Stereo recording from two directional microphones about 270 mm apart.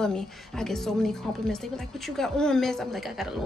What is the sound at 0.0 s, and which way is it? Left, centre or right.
A woman's voice, centre.